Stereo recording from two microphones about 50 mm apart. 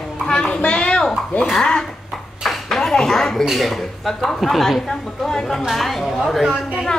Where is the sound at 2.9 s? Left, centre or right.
Centre.